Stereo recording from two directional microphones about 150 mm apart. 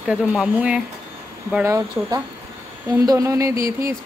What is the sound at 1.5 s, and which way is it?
Speech, 15° right (ahead or behind).